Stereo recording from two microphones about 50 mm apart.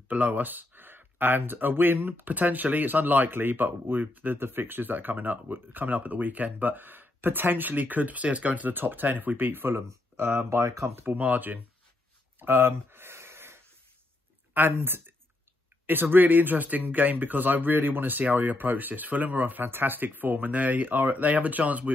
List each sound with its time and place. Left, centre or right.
0.1 s speech: right
11.1 s speech: right
12.4 s a sound: right
14.5 s speech: right